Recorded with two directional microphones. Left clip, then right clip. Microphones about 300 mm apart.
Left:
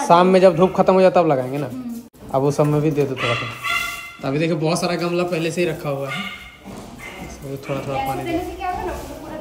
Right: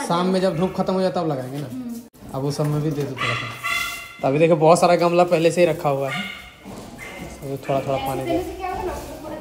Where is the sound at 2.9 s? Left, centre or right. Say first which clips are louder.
Left 4 dB; centre.